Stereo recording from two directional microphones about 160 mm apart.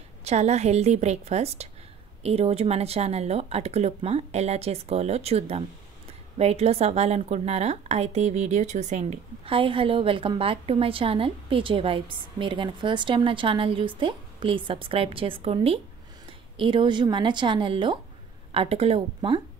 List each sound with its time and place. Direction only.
0.2 s a woman's voice: 45° right (ahead or behind)